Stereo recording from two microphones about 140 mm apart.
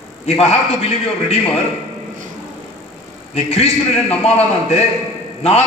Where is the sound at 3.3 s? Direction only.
45° left (ahead or behind).